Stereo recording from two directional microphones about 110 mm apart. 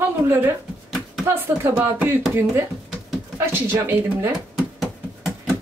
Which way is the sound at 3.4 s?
20° right (ahead or behind).